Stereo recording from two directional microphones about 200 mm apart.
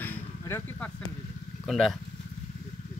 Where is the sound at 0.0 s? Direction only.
10° left (ahead or behind).